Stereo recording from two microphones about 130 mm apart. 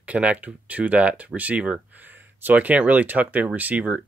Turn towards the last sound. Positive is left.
turn(degrees=-10)  # may be behind; listen again after turning